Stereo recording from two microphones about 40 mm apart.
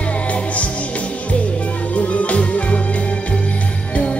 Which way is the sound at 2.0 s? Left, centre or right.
Left.